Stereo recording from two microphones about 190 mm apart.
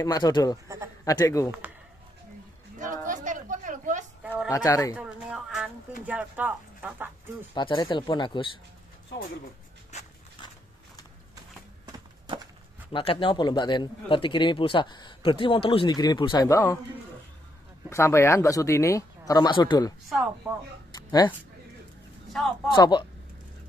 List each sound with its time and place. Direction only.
0.0 s a man's voice: 20° left (ahead or behind)
2.8 s a sound: 40° right (ahead or behind)
4.2 s a sound: 5° right (ahead or behind)
4.5 s speech: 15° left (ahead or behind)
4.9 s speech: 5° right (ahead or behind)
7.5 s a man's voice: 25° left (ahead or behind)
9.9 s a sound: 35° left (ahead or behind)
11.8 s horse: 20° right (ahead or behind)
12.9 s a man's voice: 25° left (ahead or behind)
17.8 s speech: 15° left (ahead or behind)
20.9 s a sound: 20° left (ahead or behind)
22.3 s speech: centre (ahead or behind)
22.8 s a man's voice: 25° left (ahead or behind)